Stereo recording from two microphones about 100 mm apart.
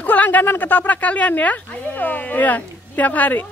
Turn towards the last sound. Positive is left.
turn(degrees=20)  # may be behind; listen again after turning